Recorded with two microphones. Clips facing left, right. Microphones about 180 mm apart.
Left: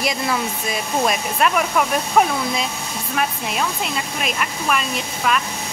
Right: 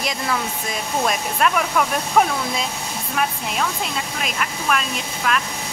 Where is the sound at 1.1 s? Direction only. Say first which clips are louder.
Even; 5° left (ahead or behind).